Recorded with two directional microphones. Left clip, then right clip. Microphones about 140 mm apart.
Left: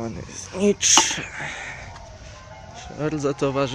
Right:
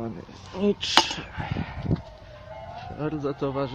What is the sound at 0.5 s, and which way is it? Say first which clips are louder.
Speech: left 4 dB; 10° left (ahead or behind).